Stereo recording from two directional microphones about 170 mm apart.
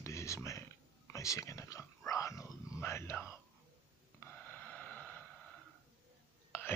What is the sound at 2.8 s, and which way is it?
Speech, 15° left (ahead or behind).